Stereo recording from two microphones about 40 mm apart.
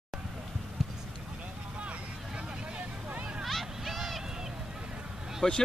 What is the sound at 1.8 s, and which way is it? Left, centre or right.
Vehicle, right.